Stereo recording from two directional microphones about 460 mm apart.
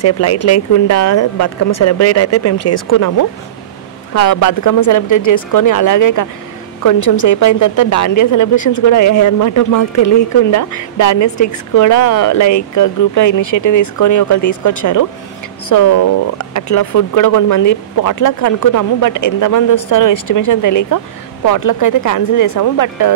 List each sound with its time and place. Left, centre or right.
0.0 s speech: left